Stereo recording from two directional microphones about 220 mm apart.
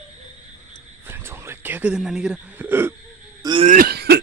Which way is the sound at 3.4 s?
20° right (ahead or behind).